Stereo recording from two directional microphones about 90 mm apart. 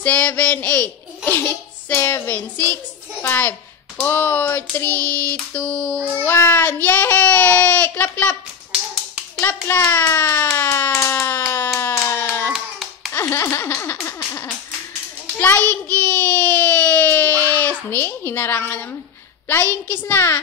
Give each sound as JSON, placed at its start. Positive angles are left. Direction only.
{"t": 0.0, "sound": "a sound", "side_deg": 15}
{"t": 2.3, "sound": "a child's voice", "side_deg": 20}
{"t": 4.0, "sound": "child singing", "side_deg": 20}
{"t": 9.4, "sound": "hands", "side_deg": 25}
{"t": 9.8, "sound": "a woman's voice", "side_deg": 20}
{"t": 10.6, "sound": "a sound", "side_deg": 25}
{"t": 13.3, "sound": "a sound", "side_deg": 30}
{"t": 15.3, "sound": "child singing", "side_deg": 20}
{"t": 19.4, "sound": "a woman's voice", "side_deg": 20}